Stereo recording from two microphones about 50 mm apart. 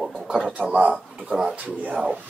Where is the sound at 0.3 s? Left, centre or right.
Right.